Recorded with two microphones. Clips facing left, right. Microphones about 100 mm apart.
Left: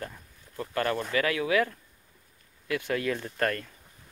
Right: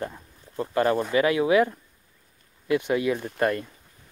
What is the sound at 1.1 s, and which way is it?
Speech, 20° right (ahead or behind).